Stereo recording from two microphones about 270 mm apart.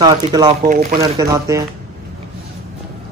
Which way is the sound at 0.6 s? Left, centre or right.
Right.